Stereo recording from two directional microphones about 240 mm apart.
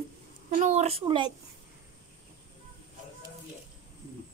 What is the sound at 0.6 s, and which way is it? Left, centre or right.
Speech, right.